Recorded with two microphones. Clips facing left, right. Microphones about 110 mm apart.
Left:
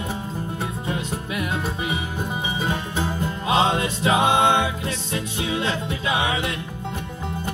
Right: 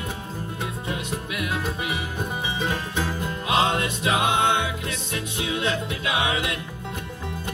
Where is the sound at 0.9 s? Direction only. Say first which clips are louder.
Left 2 dB; 30° left (ahead or behind).